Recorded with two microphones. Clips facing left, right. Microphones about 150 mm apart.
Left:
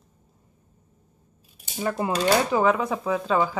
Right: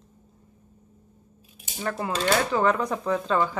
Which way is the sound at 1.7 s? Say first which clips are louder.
Left 3 dB; 15° left (ahead or behind).